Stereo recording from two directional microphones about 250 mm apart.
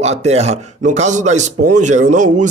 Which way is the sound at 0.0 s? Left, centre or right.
Right.